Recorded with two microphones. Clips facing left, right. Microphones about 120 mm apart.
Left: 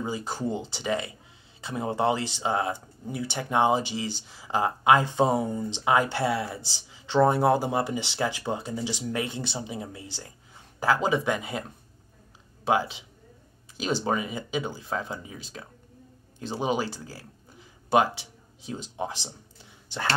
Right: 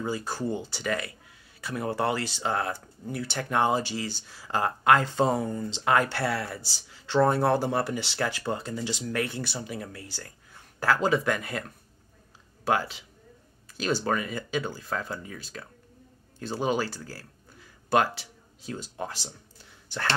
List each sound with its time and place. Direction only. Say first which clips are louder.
0.0 s speech: even; 15° left (ahead or behind)